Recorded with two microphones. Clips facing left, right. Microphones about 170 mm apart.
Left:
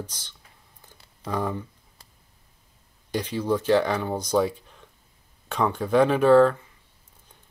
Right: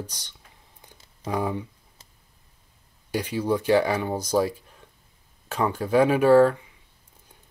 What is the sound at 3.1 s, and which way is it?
Speech, 10° right (ahead or behind).